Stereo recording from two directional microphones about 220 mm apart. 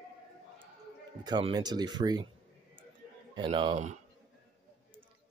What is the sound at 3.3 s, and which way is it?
Speech, 20° right (ahead or behind).